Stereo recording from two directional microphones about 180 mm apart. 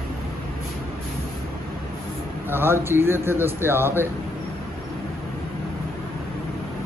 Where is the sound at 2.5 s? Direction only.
10° right (ahead or behind).